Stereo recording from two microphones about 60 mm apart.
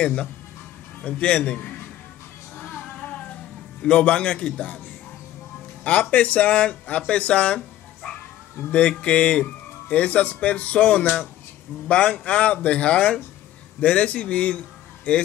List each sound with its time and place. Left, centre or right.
0.0 s speech: centre
2.5 s music: left
3.8 s speech: centre
6.0 s speech: left